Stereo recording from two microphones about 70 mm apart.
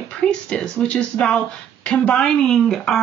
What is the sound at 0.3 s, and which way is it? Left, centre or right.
Speech, centre.